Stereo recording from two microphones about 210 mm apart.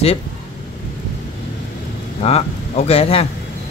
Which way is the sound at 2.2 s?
30° left (ahead or behind).